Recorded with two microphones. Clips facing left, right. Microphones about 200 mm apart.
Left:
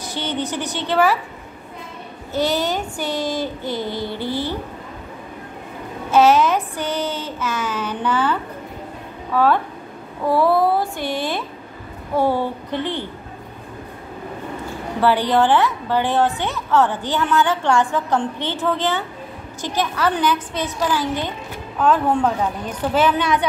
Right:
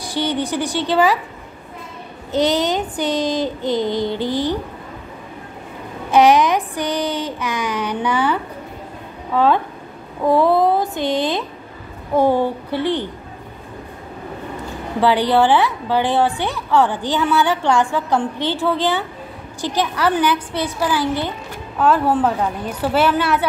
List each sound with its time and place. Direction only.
0.0 s a woman's voice: 15° right (ahead or behind)
2.3 s child singing: 20° right (ahead or behind)
6.1 s child singing: 15° right (ahead or behind)
12.2 s a woman's voice: 15° right (ahead or behind)
15.0 s a woman's voice: 15° right (ahead or behind)